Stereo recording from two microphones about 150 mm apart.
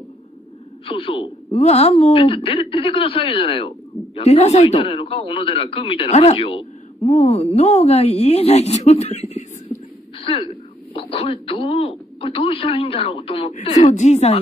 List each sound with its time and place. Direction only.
0.8 s a woman's voice: 35° left (ahead or behind)
13.8 s a woman's voice: 50° left (ahead or behind)